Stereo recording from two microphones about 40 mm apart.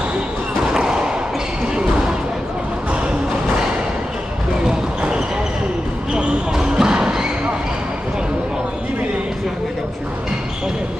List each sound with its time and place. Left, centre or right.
0.7 s thump: centre
4.6 s basketball bounce: right